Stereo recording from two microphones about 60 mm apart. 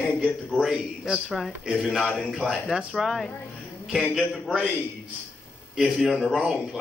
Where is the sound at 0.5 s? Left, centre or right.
Centre.